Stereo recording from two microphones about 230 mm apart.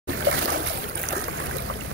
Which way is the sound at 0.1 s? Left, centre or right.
Right.